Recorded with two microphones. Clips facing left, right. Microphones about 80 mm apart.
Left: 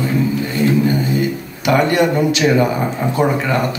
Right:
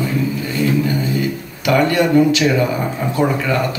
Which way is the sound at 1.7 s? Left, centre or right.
Left.